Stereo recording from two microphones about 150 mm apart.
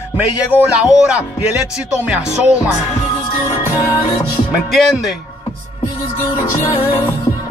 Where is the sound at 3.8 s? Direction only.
20° left (ahead or behind).